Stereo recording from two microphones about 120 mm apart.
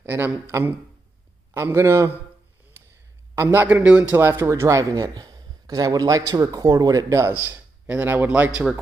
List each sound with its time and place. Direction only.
0.0 s speech: 20° right (ahead or behind)
3.3 s a man's voice: 20° right (ahead or behind)